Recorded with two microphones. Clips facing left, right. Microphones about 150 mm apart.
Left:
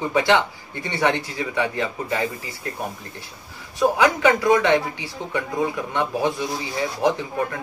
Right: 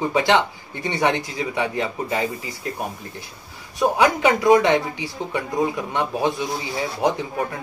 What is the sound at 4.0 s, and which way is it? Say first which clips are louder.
Speech: right 1 dB; 15° right (ahead or behind).